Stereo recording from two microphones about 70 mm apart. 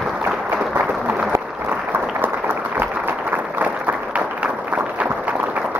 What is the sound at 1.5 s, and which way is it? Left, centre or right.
Applause, right.